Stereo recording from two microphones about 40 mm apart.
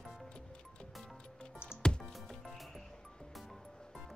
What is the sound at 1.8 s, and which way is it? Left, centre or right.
Music, centre.